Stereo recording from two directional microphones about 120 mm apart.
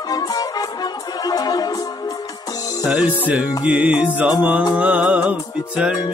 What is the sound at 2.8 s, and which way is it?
Music, 10° right (ahead or behind).